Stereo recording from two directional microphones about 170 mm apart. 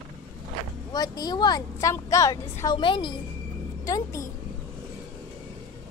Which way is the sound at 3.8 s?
20° left (ahead or behind).